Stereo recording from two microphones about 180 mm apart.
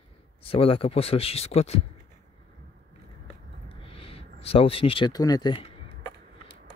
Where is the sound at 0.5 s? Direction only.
30° left (ahead or behind).